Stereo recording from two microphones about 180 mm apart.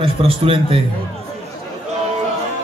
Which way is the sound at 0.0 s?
30° right (ahead or behind).